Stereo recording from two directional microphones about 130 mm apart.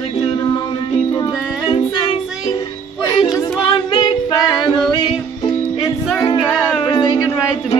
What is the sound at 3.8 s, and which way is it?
Music, 35° left (ahead or behind).